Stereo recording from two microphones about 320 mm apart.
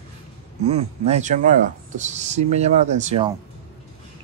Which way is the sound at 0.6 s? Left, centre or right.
Centre.